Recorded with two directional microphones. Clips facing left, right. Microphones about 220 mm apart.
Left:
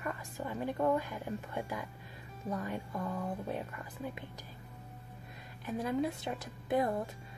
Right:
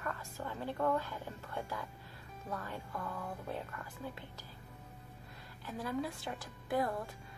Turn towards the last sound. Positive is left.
turn(degrees=20)  # may be behind; listen again after turning